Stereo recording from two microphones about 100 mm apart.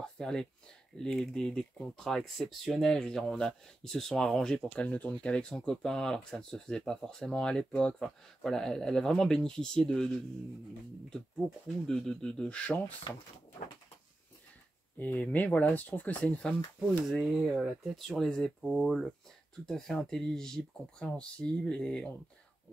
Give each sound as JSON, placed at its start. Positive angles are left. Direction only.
{"t": 0.0, "sound": "a sound", "side_deg": 10}
{"t": 0.9, "sound": "speech", "side_deg": 5}
{"t": 11.8, "sound": "speech", "side_deg": 5}
{"t": 15.0, "sound": "speech", "side_deg": 15}
{"t": 17.1, "sound": "speech", "side_deg": -5}
{"t": 18.6, "sound": "speech", "side_deg": -10}